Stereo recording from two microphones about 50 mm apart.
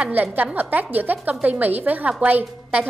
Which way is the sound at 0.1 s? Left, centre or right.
Right.